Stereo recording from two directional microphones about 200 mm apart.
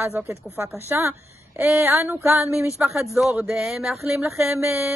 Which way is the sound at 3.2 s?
Centre (ahead or behind).